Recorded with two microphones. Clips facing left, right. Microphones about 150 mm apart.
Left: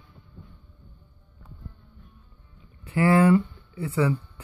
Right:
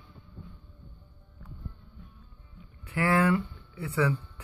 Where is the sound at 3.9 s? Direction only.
5° left (ahead or behind).